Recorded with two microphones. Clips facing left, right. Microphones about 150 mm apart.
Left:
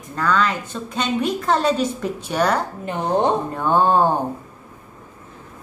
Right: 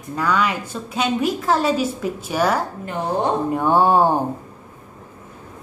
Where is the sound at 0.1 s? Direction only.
10° right (ahead or behind).